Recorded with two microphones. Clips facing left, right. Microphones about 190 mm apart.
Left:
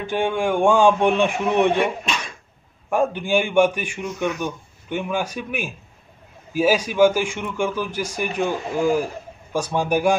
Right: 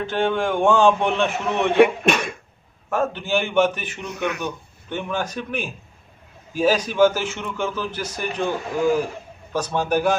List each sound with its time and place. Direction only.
0.0 s a man's voice: 10° left (ahead or behind)
1.8 s speech: 60° right (ahead or behind)
2.9 s a man's voice: 15° left (ahead or behind)
4.1 s speech: 65° right (ahead or behind)
4.4 s a man's voice: 10° left (ahead or behind)